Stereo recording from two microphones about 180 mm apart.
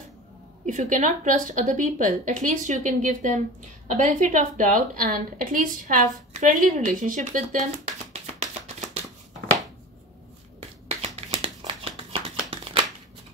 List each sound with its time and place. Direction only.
0.7 s a woman's voice: 45° right (ahead or behind)
8.1 s a sound: 40° right (ahead or behind)
11.1 s shuffling cards: 35° right (ahead or behind)